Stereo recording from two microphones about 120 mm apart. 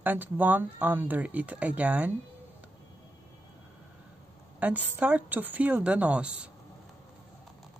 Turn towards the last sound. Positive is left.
turn(degrees=-10)  # may be behind; listen again after turning